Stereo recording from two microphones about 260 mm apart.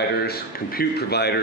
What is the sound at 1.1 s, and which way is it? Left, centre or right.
Speech, left.